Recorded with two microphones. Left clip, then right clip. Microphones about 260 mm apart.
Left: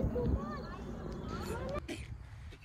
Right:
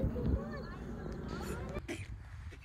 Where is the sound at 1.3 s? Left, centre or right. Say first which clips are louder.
Left 2 dB; centre.